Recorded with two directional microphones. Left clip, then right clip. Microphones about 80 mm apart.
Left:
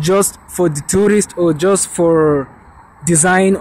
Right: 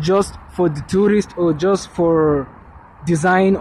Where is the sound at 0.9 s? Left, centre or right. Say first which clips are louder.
Left 3 dB; left.